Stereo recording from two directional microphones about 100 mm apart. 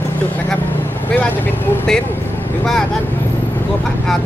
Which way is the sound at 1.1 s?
20° left (ahead or behind).